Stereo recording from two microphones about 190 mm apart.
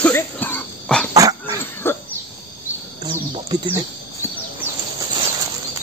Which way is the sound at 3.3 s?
25° right (ahead or behind).